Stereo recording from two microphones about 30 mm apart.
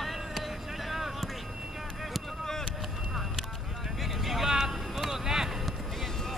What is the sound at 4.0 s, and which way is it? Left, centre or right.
Vehicle, centre.